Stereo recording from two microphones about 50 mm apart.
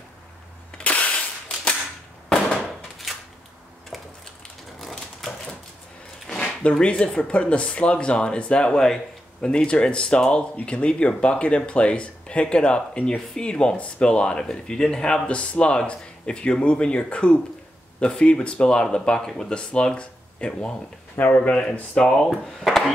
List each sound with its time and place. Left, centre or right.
0.8 s cap gun: left
2.2 s fireworks: centre
3.1 s a sound: centre
6.8 s speech: left; by 22.9 s centre